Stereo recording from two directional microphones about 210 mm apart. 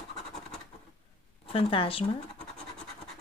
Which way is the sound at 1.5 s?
25° left (ahead or behind).